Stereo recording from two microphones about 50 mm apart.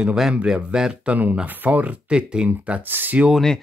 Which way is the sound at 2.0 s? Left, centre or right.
Centre.